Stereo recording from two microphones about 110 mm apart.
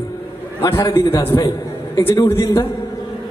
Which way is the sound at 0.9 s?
25° left (ahead or behind).